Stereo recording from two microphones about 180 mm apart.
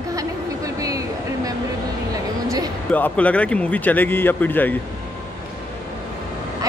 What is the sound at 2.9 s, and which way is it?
A man's voice, 10° left (ahead or behind).